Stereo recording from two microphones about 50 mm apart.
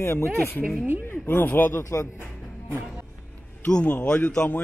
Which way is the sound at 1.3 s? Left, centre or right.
Left.